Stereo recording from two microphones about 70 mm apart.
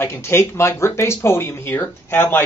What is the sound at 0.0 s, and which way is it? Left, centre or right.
Speech, left.